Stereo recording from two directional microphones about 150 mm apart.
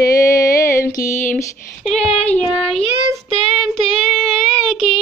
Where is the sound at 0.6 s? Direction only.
20° left (ahead or behind).